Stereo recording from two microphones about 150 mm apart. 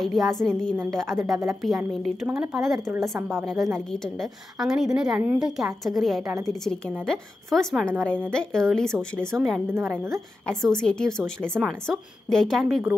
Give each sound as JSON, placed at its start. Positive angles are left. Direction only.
{"t": 0.0, "sound": "a woman's voice", "side_deg": 0}
{"t": 2.9, "sound": "speech", "side_deg": -20}
{"t": 3.9, "sound": "a woman's voice", "side_deg": 0}